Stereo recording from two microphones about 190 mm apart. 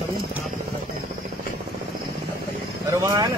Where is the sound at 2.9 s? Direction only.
20° right (ahead or behind).